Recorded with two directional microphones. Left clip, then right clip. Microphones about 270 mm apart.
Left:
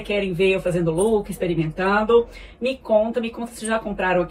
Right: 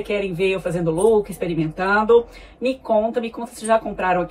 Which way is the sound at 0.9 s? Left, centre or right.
Centre.